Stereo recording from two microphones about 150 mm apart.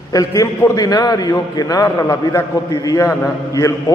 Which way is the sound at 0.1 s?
25° left (ahead or behind).